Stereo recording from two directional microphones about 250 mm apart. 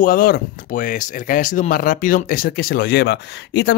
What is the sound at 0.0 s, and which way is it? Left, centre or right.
Speech, left.